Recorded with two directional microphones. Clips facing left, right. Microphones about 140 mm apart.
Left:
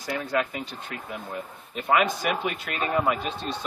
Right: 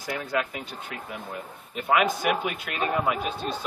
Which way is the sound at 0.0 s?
Centre (ahead or behind).